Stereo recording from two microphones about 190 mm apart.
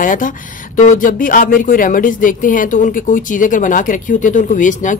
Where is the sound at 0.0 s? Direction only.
45° left (ahead or behind).